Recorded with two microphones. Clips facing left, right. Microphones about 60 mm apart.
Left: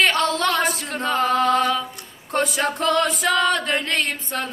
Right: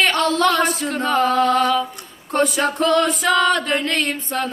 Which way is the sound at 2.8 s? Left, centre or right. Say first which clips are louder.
Right 3 dB; left.